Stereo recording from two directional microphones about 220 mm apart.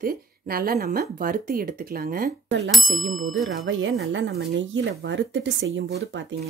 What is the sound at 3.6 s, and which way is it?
Speech, 60° right (ahead or behind).